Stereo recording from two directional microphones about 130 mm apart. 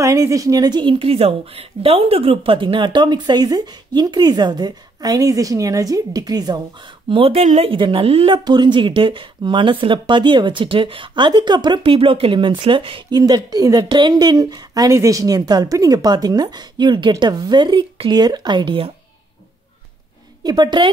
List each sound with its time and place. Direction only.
0.0 s a woman's voice: 25° right (ahead or behind)
7.1 s speech: 45° right (ahead or behind)
8.5 s a woman's voice: 35° right (ahead or behind)
13.2 s a woman's voice: 30° right (ahead or behind)
20.4 s a woman's voice: 35° right (ahead or behind)